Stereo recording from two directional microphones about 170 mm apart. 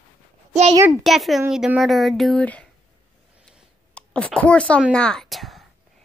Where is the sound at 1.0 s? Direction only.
Centre (ahead or behind).